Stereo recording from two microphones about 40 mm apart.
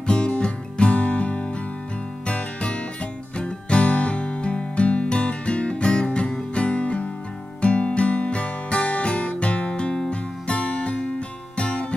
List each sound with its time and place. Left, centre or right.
0.0 s music: left